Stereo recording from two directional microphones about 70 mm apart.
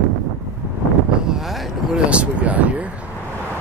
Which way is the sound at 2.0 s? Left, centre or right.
Centre.